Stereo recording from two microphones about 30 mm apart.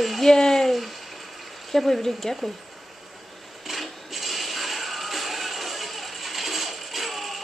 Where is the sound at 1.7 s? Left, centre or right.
Centre.